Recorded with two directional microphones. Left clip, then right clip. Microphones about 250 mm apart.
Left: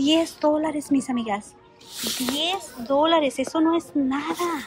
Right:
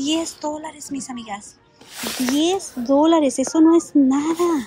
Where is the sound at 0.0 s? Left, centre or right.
Centre.